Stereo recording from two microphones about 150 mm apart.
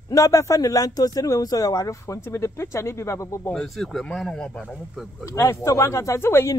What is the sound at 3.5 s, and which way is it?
Speech, centre (ahead or behind).